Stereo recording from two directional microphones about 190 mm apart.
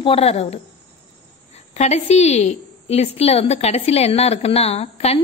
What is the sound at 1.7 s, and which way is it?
A woman's voice, 35° left (ahead or behind).